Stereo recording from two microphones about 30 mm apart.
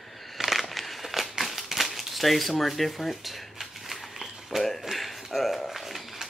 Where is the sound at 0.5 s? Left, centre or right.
Centre.